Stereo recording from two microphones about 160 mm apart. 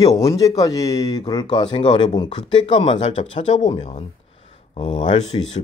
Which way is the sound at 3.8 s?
40° left (ahead or behind).